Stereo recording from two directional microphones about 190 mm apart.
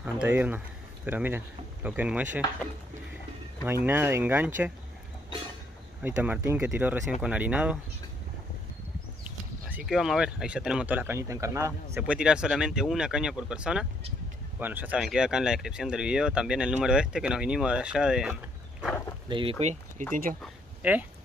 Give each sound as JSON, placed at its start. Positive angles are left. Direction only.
{"t": 0.0, "sound": "speech", "side_deg": -10}
{"t": 3.6, "sound": "speech", "side_deg": -10}
{"t": 6.0, "sound": "speech", "side_deg": -10}
{"t": 9.7, "sound": "speech", "side_deg": -5}
{"t": 19.2, "sound": "speech", "side_deg": -25}
{"t": 19.6, "sound": "speech", "side_deg": -35}
{"t": 20.4, "sound": "a sound", "side_deg": -10}